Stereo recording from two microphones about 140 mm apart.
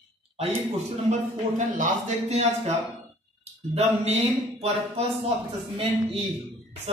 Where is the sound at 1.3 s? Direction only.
50° right (ahead or behind).